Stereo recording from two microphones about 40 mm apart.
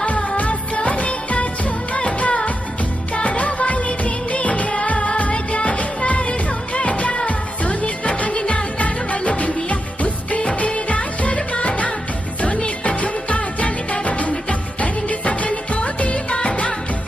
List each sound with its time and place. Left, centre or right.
0.0 s music of bollywood: left
2.0 s music: left
8.7 s music: left